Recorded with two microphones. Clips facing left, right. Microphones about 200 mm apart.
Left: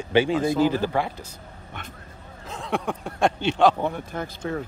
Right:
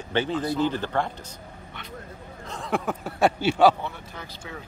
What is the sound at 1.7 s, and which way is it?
Vehicle, 50° left (ahead or behind).